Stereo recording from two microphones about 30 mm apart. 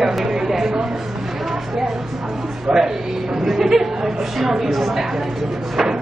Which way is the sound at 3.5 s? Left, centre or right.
Centre.